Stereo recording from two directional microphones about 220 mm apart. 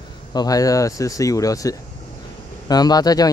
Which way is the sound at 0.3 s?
15° left (ahead or behind).